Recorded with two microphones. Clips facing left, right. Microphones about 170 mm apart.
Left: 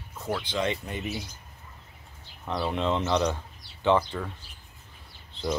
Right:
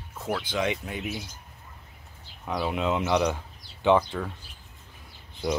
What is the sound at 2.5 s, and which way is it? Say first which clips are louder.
Speech: even; 5° right (ahead or behind).